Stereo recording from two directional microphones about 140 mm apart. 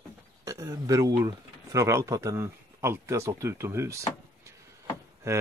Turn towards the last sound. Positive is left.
turn(degrees=-20)  # may be behind; listen again after turning